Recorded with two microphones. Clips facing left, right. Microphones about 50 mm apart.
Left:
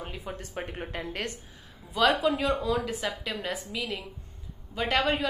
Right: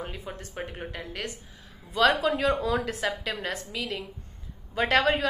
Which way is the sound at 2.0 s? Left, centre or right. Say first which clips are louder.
Right 1 dB; centre.